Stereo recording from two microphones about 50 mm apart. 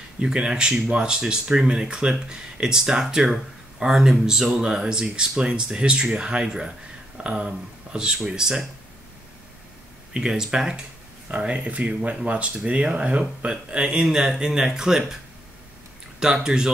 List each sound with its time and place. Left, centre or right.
0.2 s speech: centre
10.1 s speech: centre
11.2 s speech: right
16.4 s speech: centre